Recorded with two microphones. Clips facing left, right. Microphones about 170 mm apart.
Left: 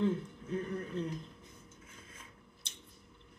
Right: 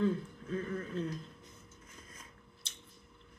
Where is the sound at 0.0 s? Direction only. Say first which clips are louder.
Even; 20° left (ahead or behind).